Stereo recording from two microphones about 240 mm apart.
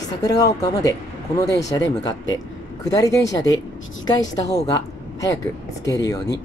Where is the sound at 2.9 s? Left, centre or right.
Centre.